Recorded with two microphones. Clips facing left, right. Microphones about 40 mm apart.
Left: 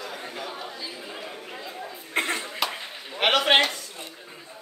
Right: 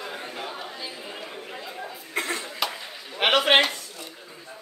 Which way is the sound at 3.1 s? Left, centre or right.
Centre.